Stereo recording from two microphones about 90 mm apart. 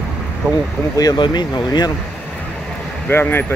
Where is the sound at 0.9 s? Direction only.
45° left (ahead or behind).